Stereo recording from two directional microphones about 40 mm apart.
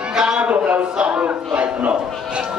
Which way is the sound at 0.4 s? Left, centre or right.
Right.